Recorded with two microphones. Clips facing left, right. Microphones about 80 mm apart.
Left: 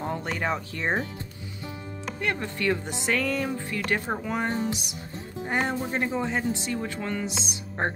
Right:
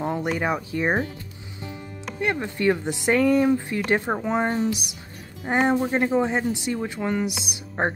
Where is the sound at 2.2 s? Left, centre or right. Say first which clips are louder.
Right 5 dB; right.